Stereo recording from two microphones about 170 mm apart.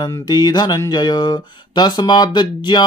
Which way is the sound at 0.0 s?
25° left (ahead or behind).